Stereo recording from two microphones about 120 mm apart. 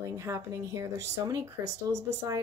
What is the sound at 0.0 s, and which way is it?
Speech, 25° right (ahead or behind).